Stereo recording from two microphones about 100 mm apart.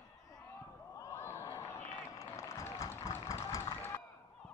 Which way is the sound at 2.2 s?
30° left (ahead or behind).